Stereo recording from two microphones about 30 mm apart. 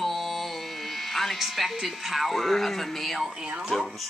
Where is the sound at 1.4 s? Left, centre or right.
Centre.